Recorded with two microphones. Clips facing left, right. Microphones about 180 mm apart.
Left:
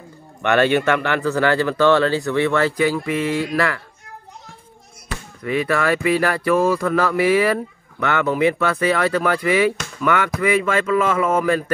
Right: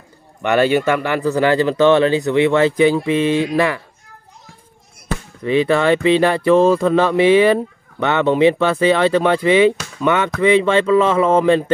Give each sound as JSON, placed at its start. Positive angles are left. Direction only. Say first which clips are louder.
{"t": 0.4, "sound": "speech", "louder": "right 2 dB", "side_deg": -10}
{"t": 5.4, "sound": "speech", "louder": "right 5 dB", "side_deg": -25}